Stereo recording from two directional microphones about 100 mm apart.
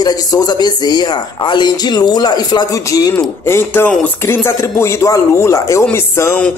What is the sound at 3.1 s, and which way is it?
Speech, 25° left (ahead or behind).